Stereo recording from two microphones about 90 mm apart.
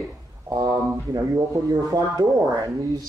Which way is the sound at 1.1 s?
40° right (ahead or behind).